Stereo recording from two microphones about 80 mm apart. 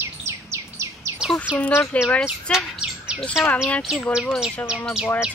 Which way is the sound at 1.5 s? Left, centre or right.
Centre.